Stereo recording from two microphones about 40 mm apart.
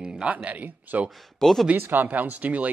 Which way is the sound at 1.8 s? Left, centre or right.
Right.